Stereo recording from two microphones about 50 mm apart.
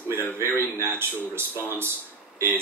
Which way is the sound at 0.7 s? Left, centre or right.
Right.